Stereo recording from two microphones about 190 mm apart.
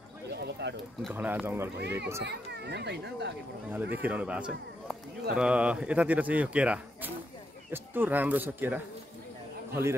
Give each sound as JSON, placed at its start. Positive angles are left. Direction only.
{"t": 0.3, "sound": "a sound", "side_deg": -60}
{"t": 1.1, "sound": "speech", "side_deg": -10}
{"t": 1.8, "sound": "speech", "side_deg": -60}
{"t": 3.7, "sound": "speech", "side_deg": -10}